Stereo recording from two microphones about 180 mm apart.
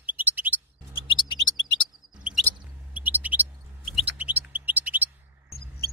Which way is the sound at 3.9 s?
10° right (ahead or behind).